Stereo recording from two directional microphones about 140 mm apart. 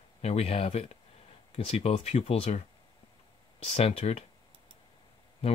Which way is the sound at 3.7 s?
45° left (ahead or behind).